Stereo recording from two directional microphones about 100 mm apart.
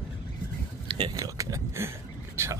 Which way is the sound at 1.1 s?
35° right (ahead or behind).